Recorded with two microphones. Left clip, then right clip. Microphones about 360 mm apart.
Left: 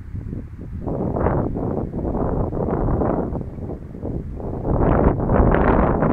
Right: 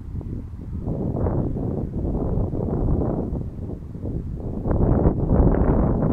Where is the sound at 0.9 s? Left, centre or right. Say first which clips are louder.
Left 5 dB; left.